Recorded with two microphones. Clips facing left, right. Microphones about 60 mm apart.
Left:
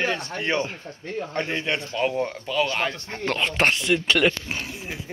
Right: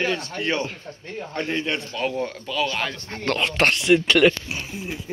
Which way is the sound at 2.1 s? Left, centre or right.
Left.